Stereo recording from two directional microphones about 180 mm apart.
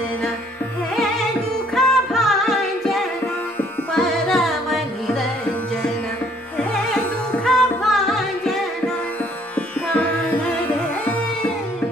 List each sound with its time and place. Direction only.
1.8 s music: centre (ahead or behind)
7.4 s music: centre (ahead or behind)